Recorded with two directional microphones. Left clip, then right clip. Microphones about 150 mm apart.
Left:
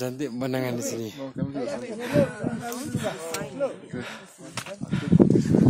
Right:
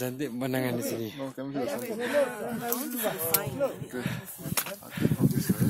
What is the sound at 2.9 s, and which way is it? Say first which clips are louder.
Speech: left 3 dB; 25° left (ahead or behind).